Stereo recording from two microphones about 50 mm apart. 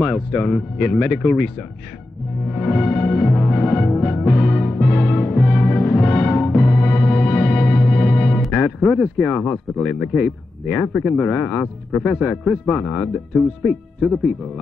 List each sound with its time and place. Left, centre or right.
0.0 s speech: centre
2.6 s music: centre
8.5 s speech: centre